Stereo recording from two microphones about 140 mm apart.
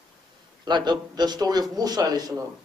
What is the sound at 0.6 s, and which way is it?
Speech, 30° right (ahead or behind).